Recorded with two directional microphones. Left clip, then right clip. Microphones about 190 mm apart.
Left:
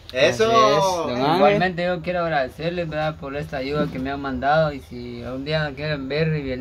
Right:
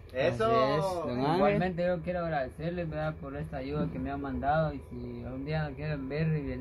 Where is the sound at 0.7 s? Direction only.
5° right (ahead or behind).